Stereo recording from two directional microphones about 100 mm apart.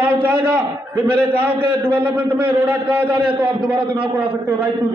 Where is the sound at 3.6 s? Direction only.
55° right (ahead or behind).